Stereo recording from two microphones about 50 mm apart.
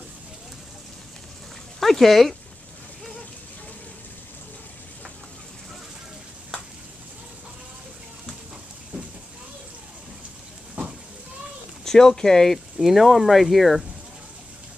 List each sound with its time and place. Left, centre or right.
1.8 s speech: centre
8.9 s a sound: right
11.8 s speech: centre
12.7 s speech: centre